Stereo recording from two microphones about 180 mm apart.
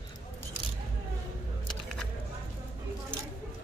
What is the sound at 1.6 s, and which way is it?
Music, centre (ahead or behind).